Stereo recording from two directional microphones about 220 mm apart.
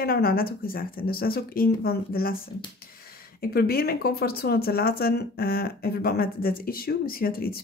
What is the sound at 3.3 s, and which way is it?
Speech, 45° left (ahead or behind).